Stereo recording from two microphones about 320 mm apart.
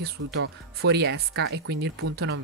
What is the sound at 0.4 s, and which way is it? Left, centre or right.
Speech, right.